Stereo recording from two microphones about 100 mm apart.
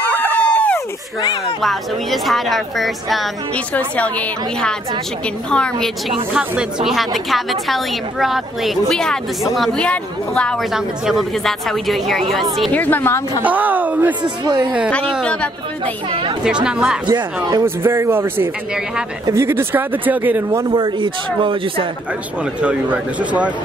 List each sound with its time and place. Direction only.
0.2 s a sound: 20° left (ahead or behind)
1.6 s a woman's voice: centre (ahead or behind)
3.5 s a woman's voice: 15° left (ahead or behind)
6.3 s a man's voice: 10° right (ahead or behind)
7.2 s a woman's voice: centre (ahead or behind)
10.7 s a woman's voice: centre (ahead or behind)
12.7 s a woman's voice: 15° left (ahead or behind)
13.4 s a man's voice: 15° right (ahead or behind)
15.8 s speech: 65° right (ahead or behind)
16.4 s a man's voice: 10° right (ahead or behind)
17.1 s speech: 35° right (ahead or behind); by 20.6 s 20° right (ahead or behind)
20.7 s speech: 55° right (ahead or behind)
22.4 s a man's voice: 10° right (ahead or behind)